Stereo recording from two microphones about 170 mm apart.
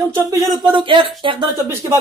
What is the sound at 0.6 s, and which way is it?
Speech, 30° right (ahead or behind).